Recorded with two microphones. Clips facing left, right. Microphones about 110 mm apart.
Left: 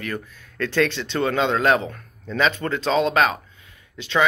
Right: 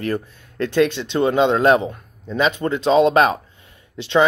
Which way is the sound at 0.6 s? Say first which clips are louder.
Right 4 dB; 15° right (ahead or behind).